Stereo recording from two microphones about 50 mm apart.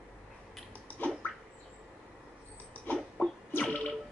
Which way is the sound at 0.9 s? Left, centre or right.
Left.